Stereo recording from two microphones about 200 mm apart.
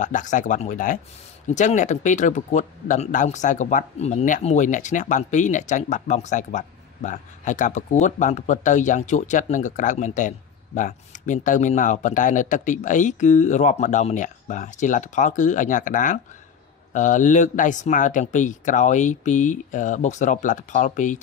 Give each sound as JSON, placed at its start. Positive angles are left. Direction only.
{"t": 0.0, "sound": "speech", "side_deg": 40}